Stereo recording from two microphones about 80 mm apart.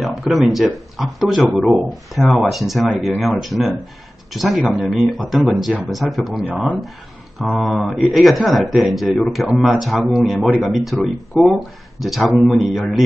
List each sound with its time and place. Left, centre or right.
0.0 s speech: centre
6.5 s speech: centre
7.3 s speech: centre